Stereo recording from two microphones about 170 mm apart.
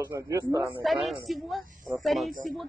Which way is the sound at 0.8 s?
Centre (ahead or behind).